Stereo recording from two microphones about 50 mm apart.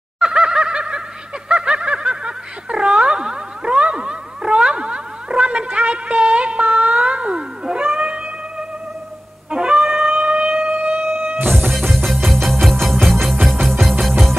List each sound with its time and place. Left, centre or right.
0.2 s fowl: centre
1.5 s snicker: centre
9.5 s wind instrument: centre
10.0 s siren: centre
10.6 s wind instrument: right
11.0 s music: right
11.7 s music: centre